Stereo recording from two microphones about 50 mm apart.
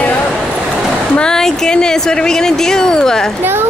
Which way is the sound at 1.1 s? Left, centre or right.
Centre.